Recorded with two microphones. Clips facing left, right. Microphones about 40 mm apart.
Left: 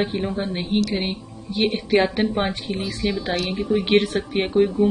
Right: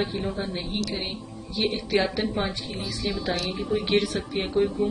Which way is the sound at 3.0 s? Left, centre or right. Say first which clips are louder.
Left 6 dB; left.